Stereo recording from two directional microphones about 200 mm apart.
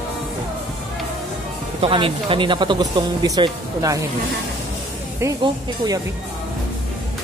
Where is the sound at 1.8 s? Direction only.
25° right (ahead or behind).